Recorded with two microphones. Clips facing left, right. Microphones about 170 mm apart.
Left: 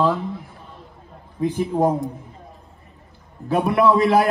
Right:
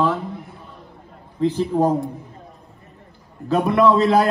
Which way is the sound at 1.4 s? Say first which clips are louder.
Right 1 dB; 15° left (ahead or behind).